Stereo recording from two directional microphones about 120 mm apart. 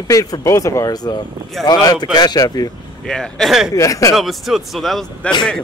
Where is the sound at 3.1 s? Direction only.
5° left (ahead or behind).